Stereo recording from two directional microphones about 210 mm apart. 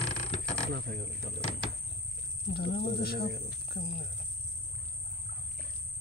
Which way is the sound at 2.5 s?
50° left (ahead or behind).